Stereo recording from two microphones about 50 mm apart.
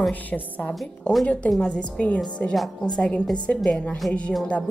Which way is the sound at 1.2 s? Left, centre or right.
Left.